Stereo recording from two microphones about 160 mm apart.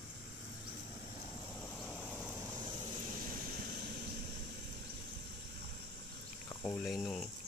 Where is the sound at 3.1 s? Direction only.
60° right (ahead or behind); by 4.4 s 75° right (ahead or behind).